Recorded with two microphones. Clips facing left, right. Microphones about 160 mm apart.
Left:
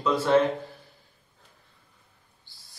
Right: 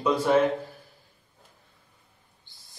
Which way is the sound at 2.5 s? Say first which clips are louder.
Even; 20° right (ahead or behind).